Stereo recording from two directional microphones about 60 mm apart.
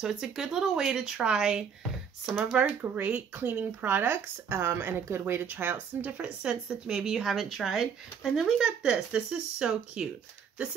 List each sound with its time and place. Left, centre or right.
0.0 s speech: centre
2.6 s speech: right
6.4 s speech: centre